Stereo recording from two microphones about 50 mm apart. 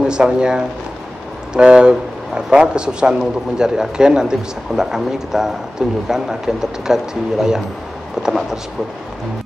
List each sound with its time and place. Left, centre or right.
0.0 s speech: centre